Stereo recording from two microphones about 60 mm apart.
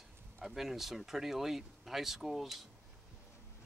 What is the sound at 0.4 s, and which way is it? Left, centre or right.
Speech, centre.